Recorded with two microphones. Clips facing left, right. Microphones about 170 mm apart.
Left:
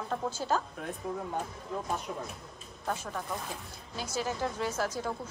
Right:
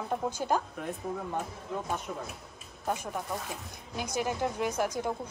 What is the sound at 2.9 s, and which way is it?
A woman's voice, 15° right (ahead or behind).